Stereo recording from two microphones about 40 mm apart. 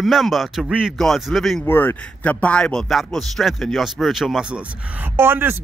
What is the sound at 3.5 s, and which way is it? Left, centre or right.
Speech, centre.